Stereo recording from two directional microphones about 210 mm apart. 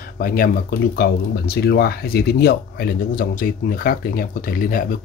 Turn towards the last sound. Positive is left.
turn(degrees=40)  # may be behind; listen again after turning